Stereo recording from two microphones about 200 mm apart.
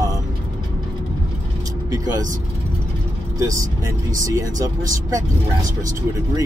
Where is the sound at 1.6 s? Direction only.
20° right (ahead or behind).